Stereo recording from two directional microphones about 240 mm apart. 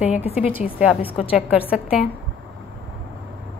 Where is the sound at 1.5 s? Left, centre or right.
Centre.